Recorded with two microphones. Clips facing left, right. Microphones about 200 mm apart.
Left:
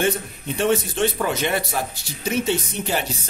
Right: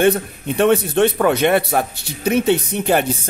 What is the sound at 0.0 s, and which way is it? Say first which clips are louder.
Speech: right 7 dB; 60° right (ahead or behind).